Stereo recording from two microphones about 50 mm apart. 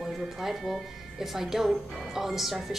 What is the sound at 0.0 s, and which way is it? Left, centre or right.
A woman's voice, centre.